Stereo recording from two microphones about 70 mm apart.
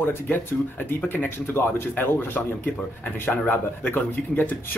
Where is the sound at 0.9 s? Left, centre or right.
Left.